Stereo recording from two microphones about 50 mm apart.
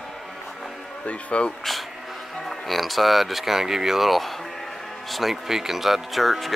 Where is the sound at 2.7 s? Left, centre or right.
Centre.